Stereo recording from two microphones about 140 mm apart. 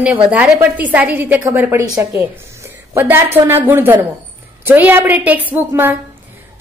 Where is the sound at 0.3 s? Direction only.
10° right (ahead or behind).